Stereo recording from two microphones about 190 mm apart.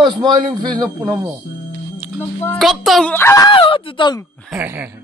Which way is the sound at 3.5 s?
25° left (ahead or behind).